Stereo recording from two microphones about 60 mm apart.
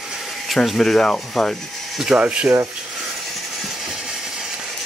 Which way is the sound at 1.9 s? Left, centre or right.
Centre.